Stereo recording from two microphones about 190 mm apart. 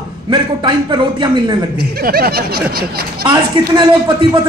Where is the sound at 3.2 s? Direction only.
25° right (ahead or behind).